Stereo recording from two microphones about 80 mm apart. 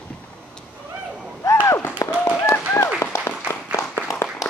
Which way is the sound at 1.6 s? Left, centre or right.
Left.